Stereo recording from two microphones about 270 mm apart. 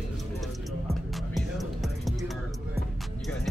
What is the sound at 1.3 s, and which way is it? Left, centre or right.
Music, centre.